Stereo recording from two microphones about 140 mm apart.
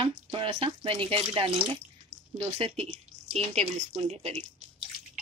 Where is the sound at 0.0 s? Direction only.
40° right (ahead or behind).